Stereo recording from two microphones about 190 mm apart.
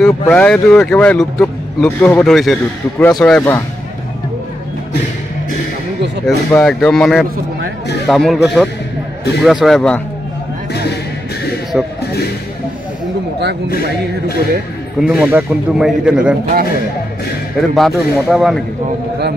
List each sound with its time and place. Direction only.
0.0 s a man's voice: 5° left (ahead or behind)
6.2 s a man's voice: 5° left (ahead or behind)
10.7 s music: 60° left (ahead or behind)
11.7 s a man's voice: 5° right (ahead or behind)
13.7 s speech: 55° left (ahead or behind)
15.0 s a man's voice: 5° right (ahead or behind)
17.6 s a man's voice: centre (ahead or behind)